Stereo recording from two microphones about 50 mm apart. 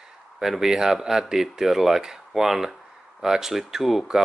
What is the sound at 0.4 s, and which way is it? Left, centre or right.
Speech, centre.